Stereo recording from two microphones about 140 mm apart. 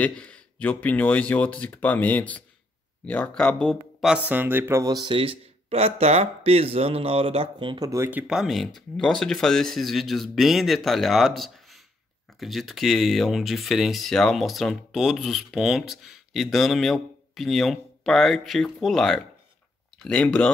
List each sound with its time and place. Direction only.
0.0 s speech: 10° left (ahead or behind)
4.3 s speech: 15° right (ahead or behind)
4.8 s speech: 30° right (ahead or behind)
7.9 s speech: 15° right (ahead or behind); by 20.5 s 5° left (ahead or behind)